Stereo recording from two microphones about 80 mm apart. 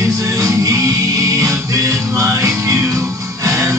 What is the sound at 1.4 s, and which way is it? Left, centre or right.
Music, right.